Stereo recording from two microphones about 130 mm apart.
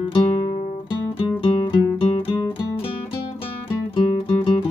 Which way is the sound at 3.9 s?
40° left (ahead or behind).